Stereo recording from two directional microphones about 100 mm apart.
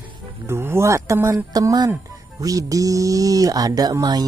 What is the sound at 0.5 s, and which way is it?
Speech, 25° right (ahead or behind).